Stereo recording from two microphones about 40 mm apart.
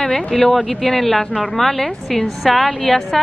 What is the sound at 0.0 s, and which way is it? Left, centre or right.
A woman's voice, centre.